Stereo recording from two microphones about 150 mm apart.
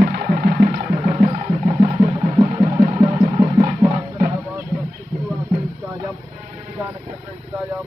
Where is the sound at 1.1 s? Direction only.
45° right (ahead or behind).